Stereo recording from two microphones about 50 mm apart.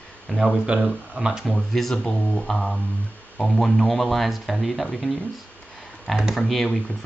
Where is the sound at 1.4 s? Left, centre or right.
Centre.